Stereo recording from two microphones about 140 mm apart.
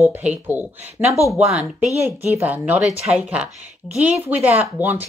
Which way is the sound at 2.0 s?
15° right (ahead or behind).